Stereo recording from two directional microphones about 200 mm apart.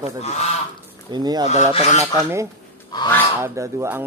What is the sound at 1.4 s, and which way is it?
Speech, 35° left (ahead or behind).